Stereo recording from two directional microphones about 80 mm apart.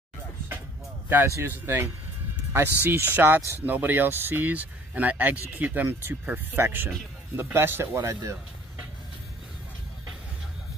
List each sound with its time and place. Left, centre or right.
1.0 s speech: right